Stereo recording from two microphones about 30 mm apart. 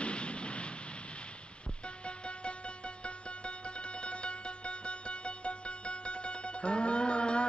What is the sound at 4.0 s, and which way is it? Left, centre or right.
Music, left.